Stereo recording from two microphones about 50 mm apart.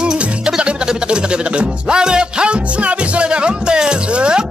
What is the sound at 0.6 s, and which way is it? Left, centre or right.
Music, centre.